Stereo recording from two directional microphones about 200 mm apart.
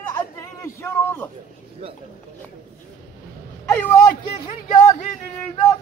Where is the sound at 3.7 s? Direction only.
15° left (ahead or behind).